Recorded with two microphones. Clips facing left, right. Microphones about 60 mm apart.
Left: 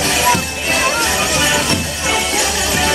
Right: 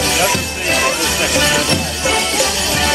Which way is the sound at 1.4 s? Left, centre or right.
Centre.